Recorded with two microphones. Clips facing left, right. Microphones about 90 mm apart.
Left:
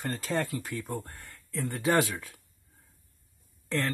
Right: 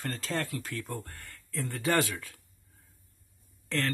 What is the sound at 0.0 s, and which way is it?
Speech, 15° left (ahead or behind).